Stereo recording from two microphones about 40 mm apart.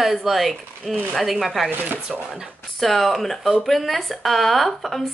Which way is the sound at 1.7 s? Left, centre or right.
Right.